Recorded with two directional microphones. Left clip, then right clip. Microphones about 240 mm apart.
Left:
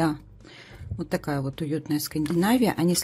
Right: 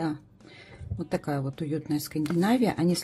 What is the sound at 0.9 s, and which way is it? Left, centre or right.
Speech, centre.